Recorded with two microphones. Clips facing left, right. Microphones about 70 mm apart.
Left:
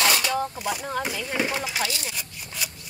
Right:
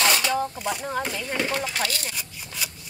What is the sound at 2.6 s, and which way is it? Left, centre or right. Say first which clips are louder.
Rub: even; centre.